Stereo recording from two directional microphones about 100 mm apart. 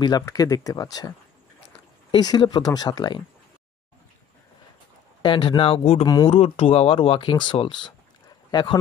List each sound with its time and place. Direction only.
0.0 s speech: 40° left (ahead or behind)
2.0 s speech: 45° left (ahead or behind)
5.2 s speech: 55° left (ahead or behind); by 6.0 s 70° left (ahead or behind)
6.2 s speech: 90° left; by 7.2 s 65° left (ahead or behind)
7.2 s speech: 50° left (ahead or behind)